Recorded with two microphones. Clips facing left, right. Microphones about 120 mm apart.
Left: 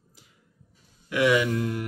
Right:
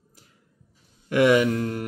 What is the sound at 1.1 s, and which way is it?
Speech, 50° right (ahead or behind).